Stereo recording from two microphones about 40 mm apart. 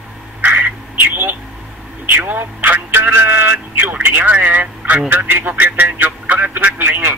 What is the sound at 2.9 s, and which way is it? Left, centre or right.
Speech, right.